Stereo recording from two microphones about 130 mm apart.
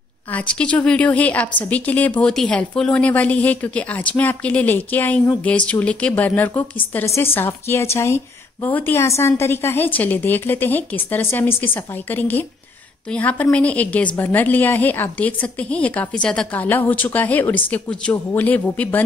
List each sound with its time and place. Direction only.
0.3 s a woman's voice: 10° left (ahead or behind)